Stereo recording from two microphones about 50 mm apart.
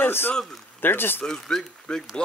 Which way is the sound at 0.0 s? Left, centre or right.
Left.